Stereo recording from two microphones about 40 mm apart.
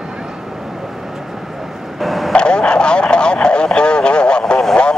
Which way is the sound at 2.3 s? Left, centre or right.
Left.